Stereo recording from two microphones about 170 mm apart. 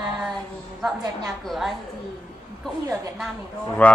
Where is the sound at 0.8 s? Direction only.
Centre (ahead or behind).